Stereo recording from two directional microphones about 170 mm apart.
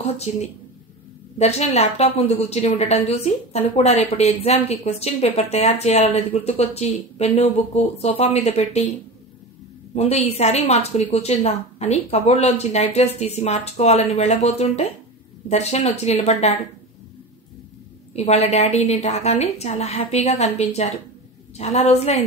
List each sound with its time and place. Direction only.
0.0 s a woman's voice: 40° left (ahead or behind)
9.9 s a woman's voice: 40° left (ahead or behind)
18.1 s a woman's voice: 40° left (ahead or behind)